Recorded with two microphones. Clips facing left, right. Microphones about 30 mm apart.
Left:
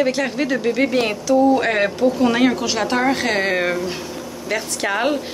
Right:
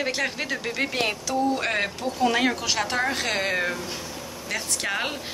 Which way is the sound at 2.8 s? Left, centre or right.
Centre.